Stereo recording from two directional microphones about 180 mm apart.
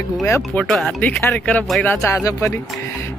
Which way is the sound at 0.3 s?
5° left (ahead or behind).